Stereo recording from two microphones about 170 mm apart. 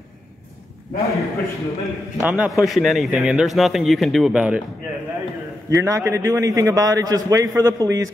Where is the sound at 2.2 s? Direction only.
5° right (ahead or behind).